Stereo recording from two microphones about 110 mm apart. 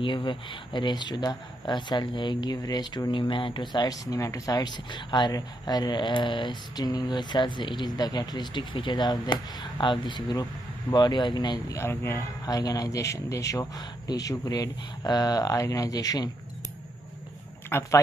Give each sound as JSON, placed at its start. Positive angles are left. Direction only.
{"t": 0.0, "sound": "speech", "side_deg": 45}
{"t": 11.8, "sound": "a man's voice", "side_deg": 25}
{"t": 17.6, "sound": "speech", "side_deg": 20}